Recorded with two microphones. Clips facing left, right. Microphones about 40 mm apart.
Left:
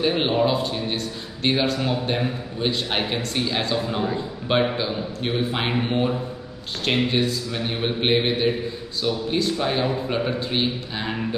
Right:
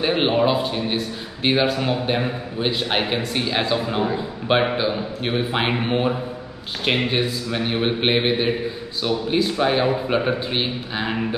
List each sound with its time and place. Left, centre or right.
0.0 s a man's voice: centre